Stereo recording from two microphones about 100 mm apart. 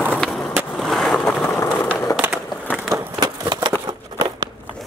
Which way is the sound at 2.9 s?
45° right (ahead or behind).